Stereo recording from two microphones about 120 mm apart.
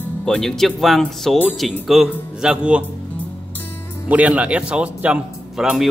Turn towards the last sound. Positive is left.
turn(degrees=-5)  # may be behind; listen again after turning